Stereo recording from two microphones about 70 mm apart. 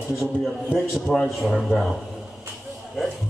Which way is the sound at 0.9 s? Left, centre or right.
Centre.